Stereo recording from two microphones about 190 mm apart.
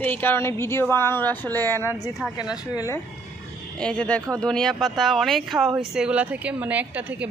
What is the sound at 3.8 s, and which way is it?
Speech, 5° left (ahead or behind).